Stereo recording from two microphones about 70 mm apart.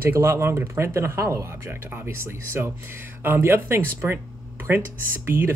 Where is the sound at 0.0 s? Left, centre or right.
Right.